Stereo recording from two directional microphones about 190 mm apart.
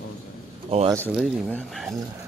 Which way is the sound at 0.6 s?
30° right (ahead or behind).